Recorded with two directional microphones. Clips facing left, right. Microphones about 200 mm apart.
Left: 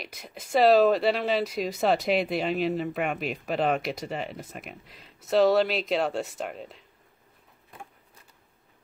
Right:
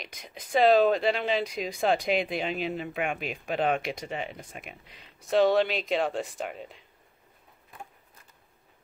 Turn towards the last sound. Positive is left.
turn(degrees=0)  # may be behind; listen again after turning